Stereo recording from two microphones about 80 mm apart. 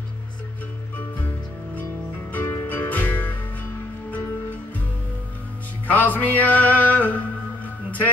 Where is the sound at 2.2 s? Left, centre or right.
Centre.